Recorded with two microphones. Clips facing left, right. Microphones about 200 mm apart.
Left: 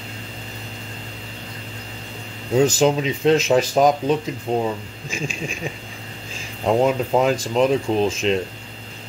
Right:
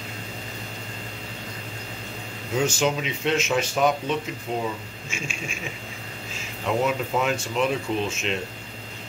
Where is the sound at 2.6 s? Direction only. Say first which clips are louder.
Left 7 dB; 35° left (ahead or behind).